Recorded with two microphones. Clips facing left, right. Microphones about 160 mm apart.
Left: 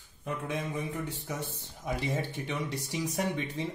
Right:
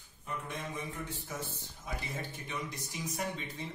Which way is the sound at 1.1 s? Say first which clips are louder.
Left 4 dB; 70° left (ahead or behind).